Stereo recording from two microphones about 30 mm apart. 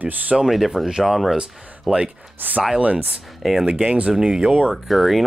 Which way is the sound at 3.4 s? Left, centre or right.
Centre.